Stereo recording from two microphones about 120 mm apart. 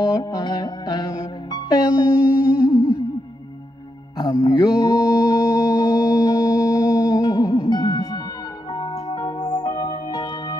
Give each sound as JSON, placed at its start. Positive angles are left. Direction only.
{"t": 0.2, "sound": "music", "side_deg": 35}
{"t": 1.8, "sound": "music", "side_deg": -10}
{"t": 4.3, "sound": "music", "side_deg": 30}
{"t": 4.9, "sound": "music", "side_deg": -10}
{"t": 6.2, "sound": "music", "side_deg": 25}
{"t": 6.5, "sound": "music", "side_deg": -10}
{"t": 7.2, "sound": "music", "side_deg": 30}